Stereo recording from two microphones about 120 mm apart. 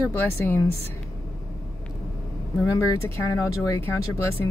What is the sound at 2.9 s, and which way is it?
Speech, 25° left (ahead or behind).